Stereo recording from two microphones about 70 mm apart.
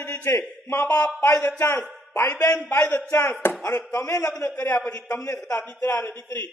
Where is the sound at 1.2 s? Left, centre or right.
Left.